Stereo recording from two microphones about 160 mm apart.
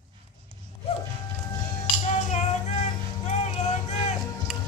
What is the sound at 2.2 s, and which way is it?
Music, 45° left (ahead or behind).